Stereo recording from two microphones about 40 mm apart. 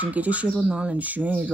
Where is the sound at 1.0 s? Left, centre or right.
Right.